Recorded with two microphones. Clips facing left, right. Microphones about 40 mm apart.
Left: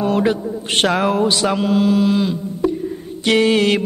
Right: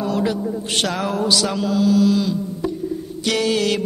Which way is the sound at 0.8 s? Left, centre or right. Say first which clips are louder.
Left 6 dB; left.